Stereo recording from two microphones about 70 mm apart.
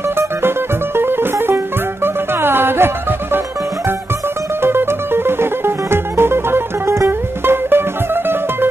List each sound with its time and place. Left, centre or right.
0.9 s music: right
4.6 s music: right